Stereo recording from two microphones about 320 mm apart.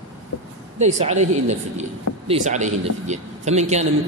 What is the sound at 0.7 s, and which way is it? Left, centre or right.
A man's voice, right.